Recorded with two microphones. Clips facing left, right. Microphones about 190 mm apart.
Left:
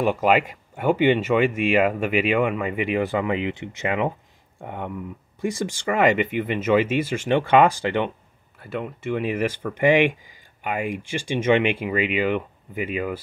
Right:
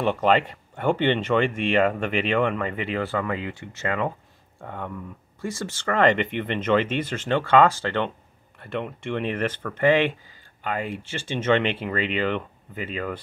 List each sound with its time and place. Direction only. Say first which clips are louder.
0.0 s speech: left 1 dB; 10° left (ahead or behind)
8.5 s speech: even; centre (ahead or behind)